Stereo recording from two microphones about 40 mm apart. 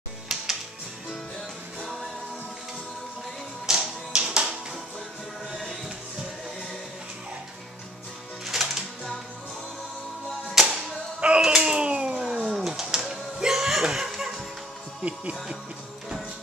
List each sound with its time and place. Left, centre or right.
0.3 s music: centre
3.6 s tap: centre
5.5 s music: centre
8.5 s music: centre
10.5 s music: centre
11.1 s a sound: right
12.2 s cat: centre
12.6 s a sound: centre
13.9 s music: centre
15.0 s music: right